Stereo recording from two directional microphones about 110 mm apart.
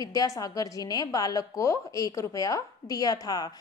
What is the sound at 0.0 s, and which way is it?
A woman's voice, 35° left (ahead or behind).